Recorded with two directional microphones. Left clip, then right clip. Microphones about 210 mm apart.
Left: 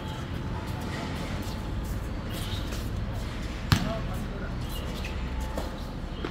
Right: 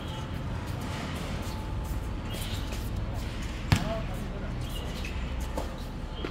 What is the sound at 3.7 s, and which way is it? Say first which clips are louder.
Basketball bounce: left 2 dB; 15° left (ahead or behind).